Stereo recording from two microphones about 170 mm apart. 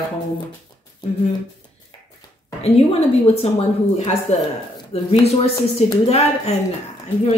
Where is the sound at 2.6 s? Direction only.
35° left (ahead or behind).